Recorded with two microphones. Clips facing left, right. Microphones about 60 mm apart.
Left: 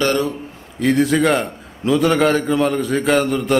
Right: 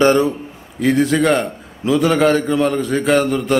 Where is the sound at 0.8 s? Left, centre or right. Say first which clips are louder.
Right 1 dB; centre.